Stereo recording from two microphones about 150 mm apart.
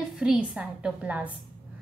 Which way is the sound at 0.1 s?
5° right (ahead or behind).